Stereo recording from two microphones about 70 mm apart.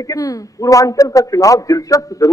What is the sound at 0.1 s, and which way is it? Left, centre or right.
A man's voice, left.